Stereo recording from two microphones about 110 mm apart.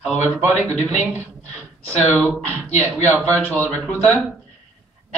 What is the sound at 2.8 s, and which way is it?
Speech, 15° right (ahead or behind).